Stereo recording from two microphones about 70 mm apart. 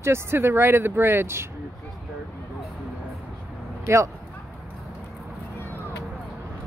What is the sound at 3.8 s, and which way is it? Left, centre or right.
Speech, right.